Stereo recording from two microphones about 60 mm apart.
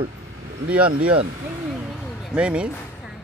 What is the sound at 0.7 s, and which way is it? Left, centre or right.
Speech, right.